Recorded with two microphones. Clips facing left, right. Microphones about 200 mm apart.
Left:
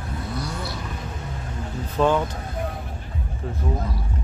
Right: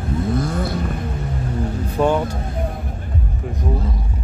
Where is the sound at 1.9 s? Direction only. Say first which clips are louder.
Right 2 dB; 15° right (ahead or behind).